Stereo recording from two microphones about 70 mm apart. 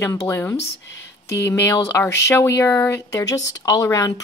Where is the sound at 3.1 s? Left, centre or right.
Left.